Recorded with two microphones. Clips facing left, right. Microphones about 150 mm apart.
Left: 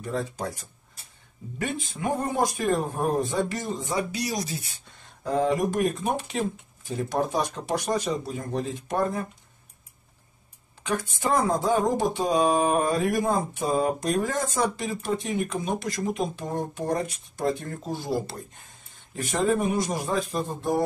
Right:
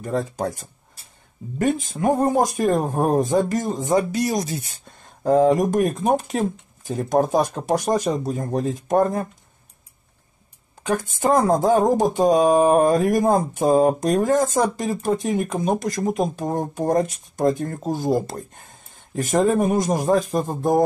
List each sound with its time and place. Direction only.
0.0 s speech: 45° right (ahead or behind)
10.9 s speech: 45° right (ahead or behind)